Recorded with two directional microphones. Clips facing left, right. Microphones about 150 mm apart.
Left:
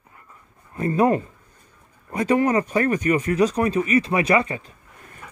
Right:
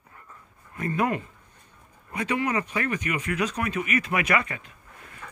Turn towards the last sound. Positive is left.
turn(degrees=30)  # may be behind; listen again after turning